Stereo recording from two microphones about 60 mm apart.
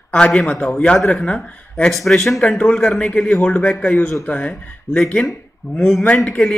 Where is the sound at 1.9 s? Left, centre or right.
Centre.